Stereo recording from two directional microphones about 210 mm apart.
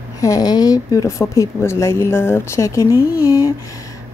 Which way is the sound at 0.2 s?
15° left (ahead or behind).